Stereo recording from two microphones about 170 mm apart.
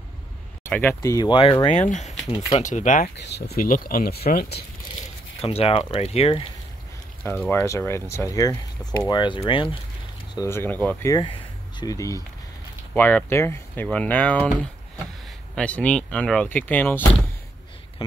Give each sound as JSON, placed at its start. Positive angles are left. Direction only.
{"t": 0.7, "sound": "speech", "side_deg": 10}
{"t": 1.9, "sound": "speech", "side_deg": 45}
{"t": 3.2, "sound": "speech", "side_deg": 75}
{"t": 5.4, "sound": "speech", "side_deg": 35}
{"t": 7.2, "sound": "speech", "side_deg": 10}
{"t": 10.3, "sound": "speech", "side_deg": 15}
{"t": 11.1, "sound": "speech", "side_deg": 30}
{"t": 15.5, "sound": "speech", "side_deg": 5}